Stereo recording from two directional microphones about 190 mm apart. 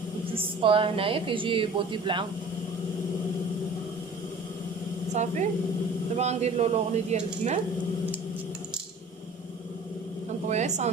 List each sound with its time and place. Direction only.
0.3 s a woman's voice: 30° right (ahead or behind)
5.1 s speech: 40° right (ahead or behind)
10.5 s speech: 35° right (ahead or behind)